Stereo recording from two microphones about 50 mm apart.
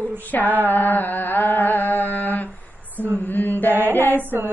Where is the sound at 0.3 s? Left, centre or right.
Left.